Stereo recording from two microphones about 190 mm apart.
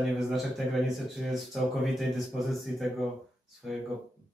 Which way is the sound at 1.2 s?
Centre (ahead or behind).